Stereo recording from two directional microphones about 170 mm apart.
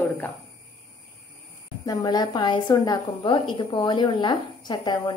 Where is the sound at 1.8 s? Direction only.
25° left (ahead or behind).